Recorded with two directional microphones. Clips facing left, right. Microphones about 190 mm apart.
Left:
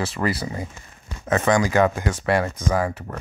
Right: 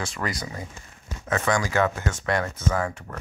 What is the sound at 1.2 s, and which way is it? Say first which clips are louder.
Speech: left 5 dB; 20° left (ahead or behind).